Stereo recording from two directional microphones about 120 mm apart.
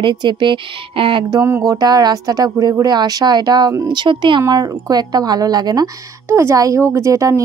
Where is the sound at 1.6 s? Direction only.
30° right (ahead or behind).